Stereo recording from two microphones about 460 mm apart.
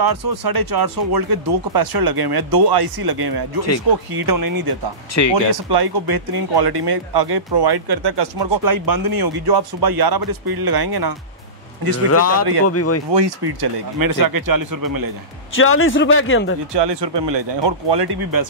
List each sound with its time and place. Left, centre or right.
0.0 s speech: right
8.6 s speech: right
12.1 s speech: left
13.1 s speech: right
15.5 s a man's voice: left
16.7 s speech: right